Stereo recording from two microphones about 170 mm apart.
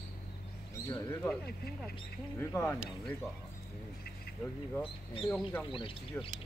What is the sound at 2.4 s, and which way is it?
Speech, 15° left (ahead or behind).